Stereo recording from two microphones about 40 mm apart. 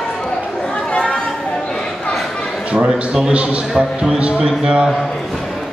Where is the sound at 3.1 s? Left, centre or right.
Right.